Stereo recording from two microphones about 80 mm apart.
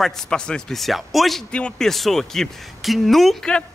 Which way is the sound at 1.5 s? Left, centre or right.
Centre.